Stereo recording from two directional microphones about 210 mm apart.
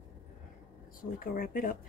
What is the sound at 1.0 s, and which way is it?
Speech, 40° left (ahead or behind).